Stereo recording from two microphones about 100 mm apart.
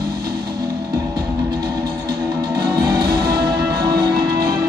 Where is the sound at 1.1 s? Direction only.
40° right (ahead or behind).